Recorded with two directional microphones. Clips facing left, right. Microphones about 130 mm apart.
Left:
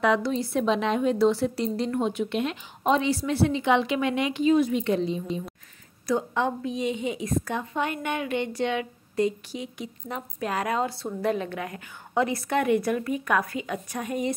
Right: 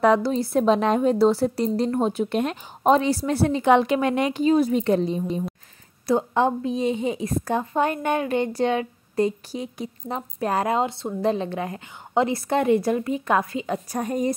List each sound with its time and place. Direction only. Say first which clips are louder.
0.0 s a woman's voice: right 4 dB; 40° right (ahead or behind)
6.0 s a woman's voice: right 5 dB; 35° right (ahead or behind)
13.9 s a woman's voice: right 4 dB; 40° right (ahead or behind)